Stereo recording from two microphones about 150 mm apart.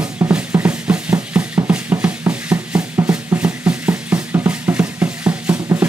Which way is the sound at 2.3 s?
10° right (ahead or behind).